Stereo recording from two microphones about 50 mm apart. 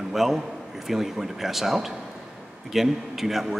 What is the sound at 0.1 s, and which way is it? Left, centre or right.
A man's voice, centre.